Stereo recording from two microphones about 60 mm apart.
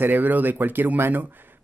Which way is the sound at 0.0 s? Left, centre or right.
Right.